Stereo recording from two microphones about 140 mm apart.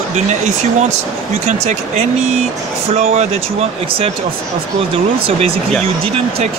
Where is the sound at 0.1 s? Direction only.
55° right (ahead or behind).